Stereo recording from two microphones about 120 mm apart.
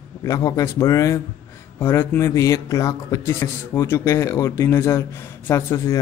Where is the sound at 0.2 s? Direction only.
30° left (ahead or behind).